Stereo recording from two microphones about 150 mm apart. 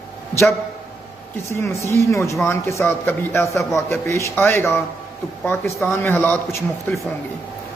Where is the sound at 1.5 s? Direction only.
20° left (ahead or behind).